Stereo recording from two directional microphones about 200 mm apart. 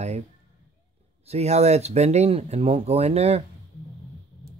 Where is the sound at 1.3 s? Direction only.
35° right (ahead or behind).